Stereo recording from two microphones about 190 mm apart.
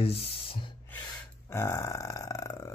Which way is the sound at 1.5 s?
15° left (ahead or behind).